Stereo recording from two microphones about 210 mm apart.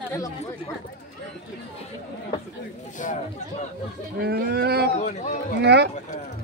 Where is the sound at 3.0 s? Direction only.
35° left (ahead or behind).